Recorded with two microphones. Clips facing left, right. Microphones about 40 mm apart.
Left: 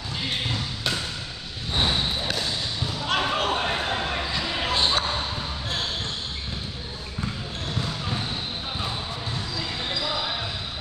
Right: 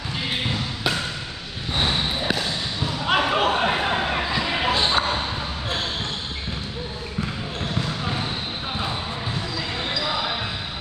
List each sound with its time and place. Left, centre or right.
3.1 s basketball bounce: centre